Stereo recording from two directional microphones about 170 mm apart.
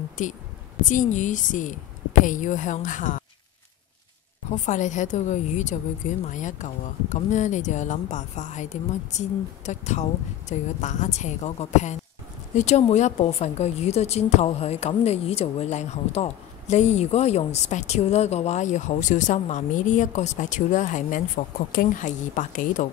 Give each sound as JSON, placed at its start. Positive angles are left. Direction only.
{"t": 0.8, "sound": "a woman's voice", "side_deg": 45}
{"t": 4.5, "sound": "a woman's voice", "side_deg": 45}